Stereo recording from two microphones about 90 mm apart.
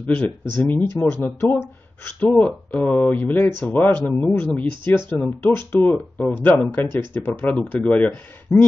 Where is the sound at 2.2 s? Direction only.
15° left (ahead or behind).